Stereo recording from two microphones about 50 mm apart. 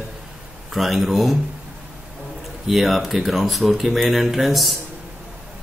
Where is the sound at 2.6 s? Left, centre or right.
Centre.